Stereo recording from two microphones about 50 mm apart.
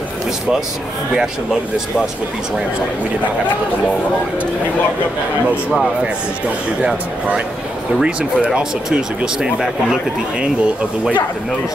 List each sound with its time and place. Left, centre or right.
1.1 s speech: centre
8.0 s speech: centre
10.4 s speech: right